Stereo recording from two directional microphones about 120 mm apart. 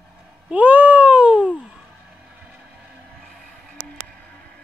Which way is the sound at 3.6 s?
10° left (ahead or behind).